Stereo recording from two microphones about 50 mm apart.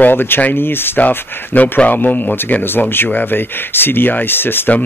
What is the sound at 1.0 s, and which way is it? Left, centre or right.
Speech, left.